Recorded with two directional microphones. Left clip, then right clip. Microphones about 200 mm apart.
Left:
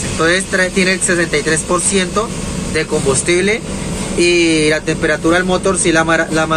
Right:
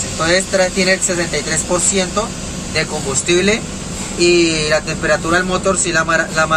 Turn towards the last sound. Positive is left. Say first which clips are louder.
# left 1 dB
turn(degrees=5)  # may be behind; listen again after turning